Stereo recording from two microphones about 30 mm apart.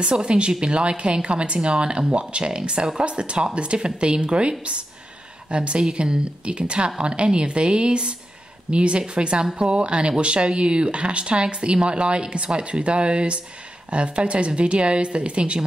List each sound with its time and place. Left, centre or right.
0.0 s speech: right